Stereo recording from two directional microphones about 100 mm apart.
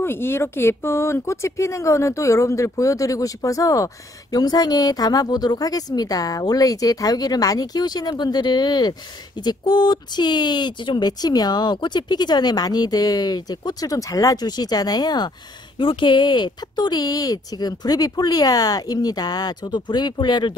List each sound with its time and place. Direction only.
0.0 s speech: 25° left (ahead or behind); by 15.3 s 45° left (ahead or behind)
15.8 s speech: 55° left (ahead or behind)